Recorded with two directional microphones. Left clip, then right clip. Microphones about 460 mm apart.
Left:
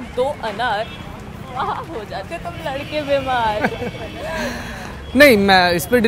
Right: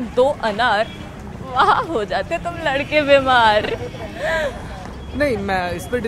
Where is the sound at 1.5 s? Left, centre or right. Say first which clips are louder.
Right 8 dB; right.